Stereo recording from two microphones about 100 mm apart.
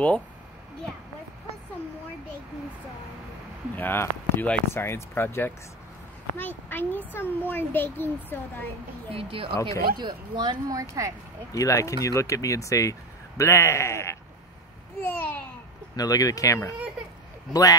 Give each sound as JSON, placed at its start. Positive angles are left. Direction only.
{"t": 3.7, "sound": "a child's voice", "side_deg": 20}
{"t": 9.1, "sound": "speech", "side_deg": -70}
{"t": 9.9, "sound": "speech", "side_deg": -45}
{"t": 10.7, "sound": "speech", "side_deg": -35}
{"t": 11.5, "sound": "a child's voice", "side_deg": 35}
{"t": 16.0, "sound": "speech", "side_deg": 35}